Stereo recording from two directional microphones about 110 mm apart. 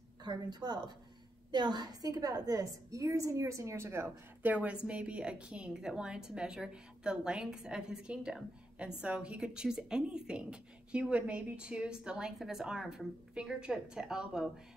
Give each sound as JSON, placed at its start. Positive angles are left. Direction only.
{"t": 0.2, "sound": "a woman's voice", "side_deg": -40}